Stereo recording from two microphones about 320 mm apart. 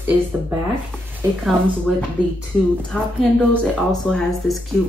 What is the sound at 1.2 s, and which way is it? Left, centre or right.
Speech, centre.